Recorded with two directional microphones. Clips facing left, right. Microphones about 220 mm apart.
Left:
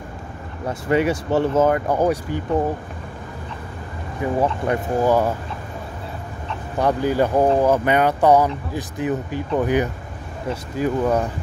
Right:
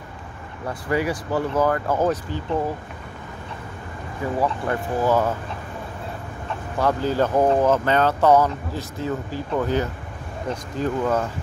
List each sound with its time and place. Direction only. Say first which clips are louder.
0.7 s speech: left 4 dB; 25° left (ahead or behind)
4.4 s speech: left 3 dB; 15° left (ahead or behind)
6.8 s speech: left 2 dB; 15° left (ahead or behind)